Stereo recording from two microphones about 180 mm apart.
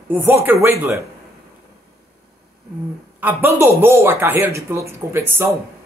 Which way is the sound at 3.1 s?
10° right (ahead or behind).